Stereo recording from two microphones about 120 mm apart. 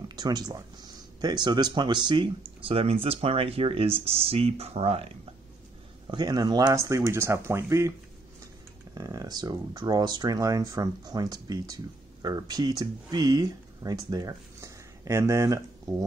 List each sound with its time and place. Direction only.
0.1 s speech: 35° right (ahead or behind); by 5.1 s 55° right (ahead or behind)
6.0 s speech: 35° right (ahead or behind)
8.9 s speech: 30° right (ahead or behind)